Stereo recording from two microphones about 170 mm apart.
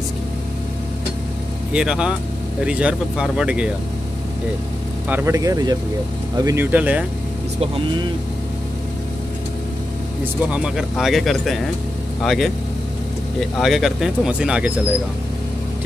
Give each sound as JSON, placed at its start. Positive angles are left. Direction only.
{"t": 1.7, "sound": "speech", "side_deg": -5}
{"t": 5.0, "sound": "speech", "side_deg": -15}
{"t": 7.6, "sound": "speech", "side_deg": -35}
{"t": 10.2, "sound": "speech", "side_deg": -5}
{"t": 13.6, "sound": "speech", "side_deg": 0}